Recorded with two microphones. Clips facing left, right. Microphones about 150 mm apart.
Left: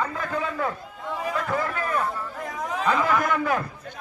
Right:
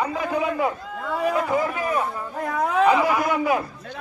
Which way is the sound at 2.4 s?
65° right (ahead or behind).